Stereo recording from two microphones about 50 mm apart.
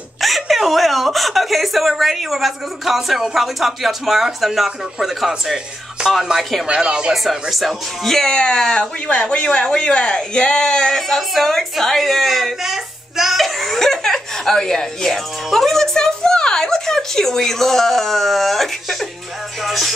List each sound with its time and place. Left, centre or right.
0.2 s speech: centre
7.2 s speech: centre
19.6 s music: centre